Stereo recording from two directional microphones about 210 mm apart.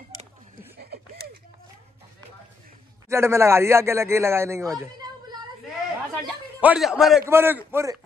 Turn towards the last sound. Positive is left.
turn(degrees=-10)  # may be behind; listen again after turning